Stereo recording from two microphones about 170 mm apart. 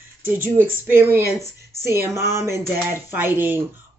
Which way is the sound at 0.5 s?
15° right (ahead or behind).